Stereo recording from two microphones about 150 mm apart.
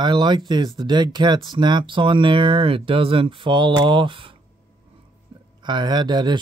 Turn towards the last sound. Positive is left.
turn(degrees=-30)  # may be behind; listen again after turning